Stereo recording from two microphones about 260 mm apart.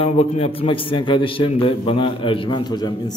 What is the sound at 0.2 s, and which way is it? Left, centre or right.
A man's voice, left.